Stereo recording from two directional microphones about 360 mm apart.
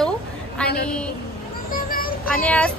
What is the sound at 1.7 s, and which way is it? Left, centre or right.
Child singing, left.